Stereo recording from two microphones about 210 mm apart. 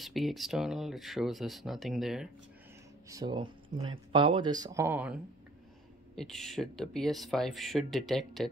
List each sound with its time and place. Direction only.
0.0 s speech: centre (ahead or behind)
3.1 s speech: 20° right (ahead or behind); by 8.5 s centre (ahead or behind)